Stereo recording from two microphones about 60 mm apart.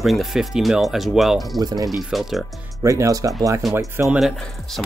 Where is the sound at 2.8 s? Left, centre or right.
Right.